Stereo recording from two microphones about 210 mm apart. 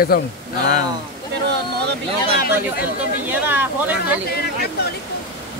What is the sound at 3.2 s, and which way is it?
Speech, 10° right (ahead or behind).